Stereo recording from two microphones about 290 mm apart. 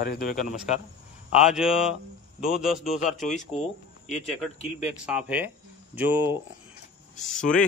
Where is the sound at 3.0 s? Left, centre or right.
Left.